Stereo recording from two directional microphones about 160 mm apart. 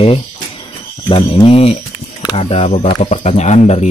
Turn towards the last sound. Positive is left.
turn(degrees=45)  # may be behind; listen again after turning